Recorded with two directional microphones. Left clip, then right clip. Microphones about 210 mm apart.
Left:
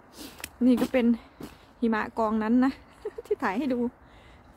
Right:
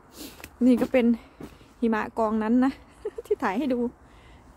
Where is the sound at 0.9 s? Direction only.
10° right (ahead or behind).